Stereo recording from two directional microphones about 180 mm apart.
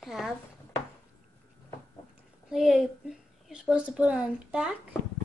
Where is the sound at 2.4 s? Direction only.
Centre (ahead or behind).